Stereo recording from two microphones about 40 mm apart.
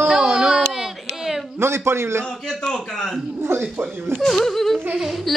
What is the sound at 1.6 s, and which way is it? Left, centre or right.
Speech, right.